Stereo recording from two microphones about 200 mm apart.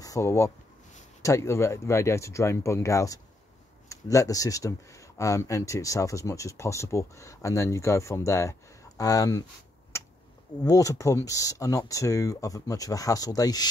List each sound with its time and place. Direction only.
0.0 s speech: 15° left (ahead or behind)
10.6 s speech: 15° left (ahead or behind)